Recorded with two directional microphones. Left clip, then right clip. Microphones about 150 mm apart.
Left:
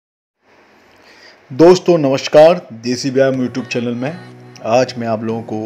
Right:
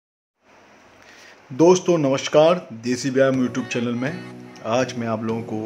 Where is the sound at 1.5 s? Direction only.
25° left (ahead or behind).